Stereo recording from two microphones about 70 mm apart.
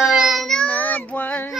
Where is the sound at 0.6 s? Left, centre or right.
Left.